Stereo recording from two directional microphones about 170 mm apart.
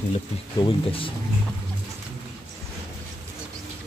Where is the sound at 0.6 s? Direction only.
30° left (ahead or behind).